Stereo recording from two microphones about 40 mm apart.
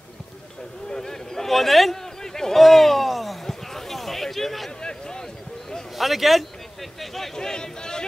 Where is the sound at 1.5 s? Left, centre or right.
Centre.